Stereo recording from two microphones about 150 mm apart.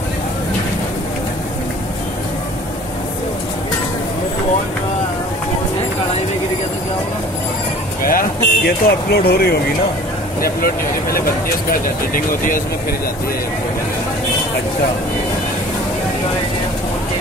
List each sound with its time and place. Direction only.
8.0 s speech: 70° left (ahead or behind); by 9.6 s 90° left
10.4 s speech: 75° left (ahead or behind)
12.1 s speech: 70° left (ahead or behind)